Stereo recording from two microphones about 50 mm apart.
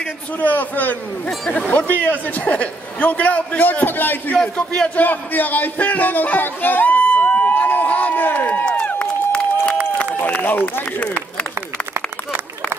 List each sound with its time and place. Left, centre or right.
0.4 s a man's voice: left
3.6 s a man's voice: left
4.6 s a man's voice: left
4.9 s a man's voice: left
8.6 s run: left
9.0 s a sound: left
10.2 s speech: left
10.6 s a man's voice: left